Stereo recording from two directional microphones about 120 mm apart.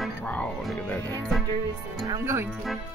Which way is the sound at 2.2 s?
20° right (ahead or behind).